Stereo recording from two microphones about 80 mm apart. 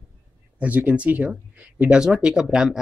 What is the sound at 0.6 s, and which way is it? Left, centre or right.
Speech, centre.